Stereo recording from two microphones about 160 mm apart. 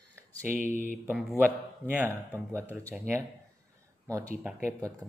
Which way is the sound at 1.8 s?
10° right (ahead or behind).